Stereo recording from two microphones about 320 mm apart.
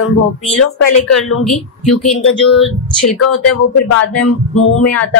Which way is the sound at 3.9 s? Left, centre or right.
Left.